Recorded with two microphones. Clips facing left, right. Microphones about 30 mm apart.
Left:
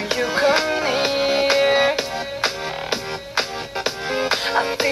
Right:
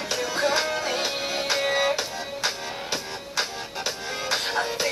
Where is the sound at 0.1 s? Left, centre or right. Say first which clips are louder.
Left 6 dB; left.